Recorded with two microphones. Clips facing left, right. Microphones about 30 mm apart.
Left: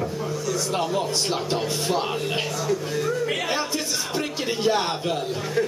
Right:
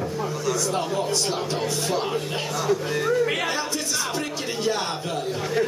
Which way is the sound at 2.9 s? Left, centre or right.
Right.